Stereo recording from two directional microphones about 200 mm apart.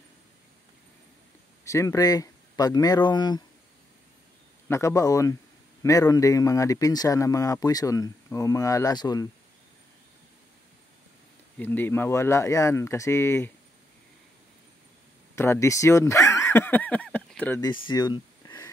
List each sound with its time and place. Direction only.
1.6 s speech: 15° left (ahead or behind)
4.6 s a man's voice: 15° left (ahead or behind)
11.5 s a man's voice: 10° left (ahead or behind)
15.3 s a sound: 10° left (ahead or behind)
17.6 s speech: 20° left (ahead or behind)